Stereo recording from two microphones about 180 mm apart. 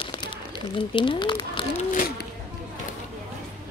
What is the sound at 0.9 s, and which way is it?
Speech, 25° left (ahead or behind).